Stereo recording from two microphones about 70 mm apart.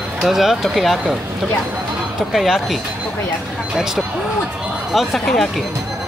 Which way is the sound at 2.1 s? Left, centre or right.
Centre.